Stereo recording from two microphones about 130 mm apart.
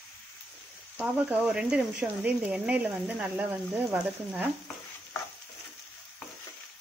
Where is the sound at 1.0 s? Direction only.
10° right (ahead or behind).